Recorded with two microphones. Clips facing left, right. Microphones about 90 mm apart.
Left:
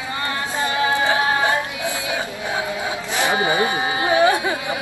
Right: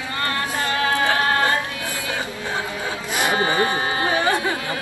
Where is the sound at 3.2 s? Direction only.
15° left (ahead or behind).